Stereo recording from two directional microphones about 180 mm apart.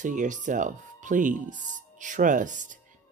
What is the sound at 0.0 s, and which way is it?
Speech, 45° right (ahead or behind).